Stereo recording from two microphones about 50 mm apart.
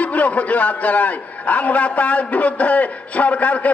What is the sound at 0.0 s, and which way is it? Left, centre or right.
A man's voice, left.